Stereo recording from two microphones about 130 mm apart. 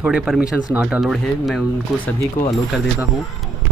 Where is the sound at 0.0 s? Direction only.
10° right (ahead or behind).